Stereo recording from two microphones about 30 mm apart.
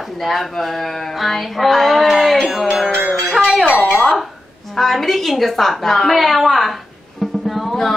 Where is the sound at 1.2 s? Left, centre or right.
Centre.